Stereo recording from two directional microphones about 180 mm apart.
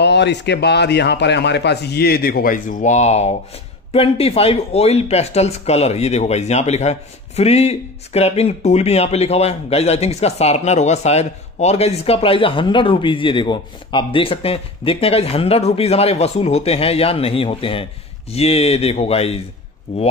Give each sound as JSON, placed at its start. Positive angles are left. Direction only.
{"t": 0.0, "sound": "speech", "side_deg": 75}